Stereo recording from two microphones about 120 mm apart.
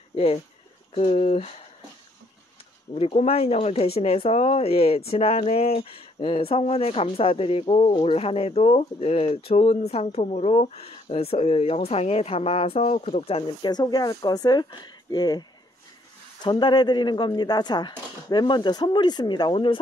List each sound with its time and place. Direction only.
0.1 s speech: 55° left (ahead or behind)
0.9 s speech: 70° left (ahead or behind)
2.9 s speech: 55° left (ahead or behind)
13.6 s speech: 35° left (ahead or behind)
16.4 s speech: 40° left (ahead or behind)